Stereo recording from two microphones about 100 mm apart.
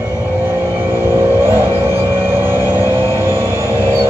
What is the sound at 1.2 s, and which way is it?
Vehicle, 25° right (ahead or behind).